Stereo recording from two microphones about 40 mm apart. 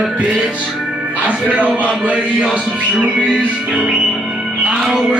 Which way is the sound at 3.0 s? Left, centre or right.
Right.